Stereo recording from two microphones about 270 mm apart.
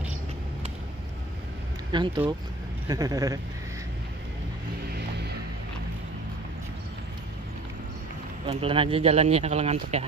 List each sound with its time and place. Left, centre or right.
1.9 s speech: centre
4.9 s music: right
8.5 s speech: centre